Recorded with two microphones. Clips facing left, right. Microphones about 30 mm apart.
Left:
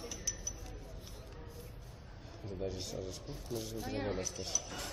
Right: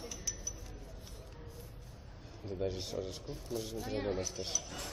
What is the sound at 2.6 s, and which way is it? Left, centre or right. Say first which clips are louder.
Speech: right 3 dB; right.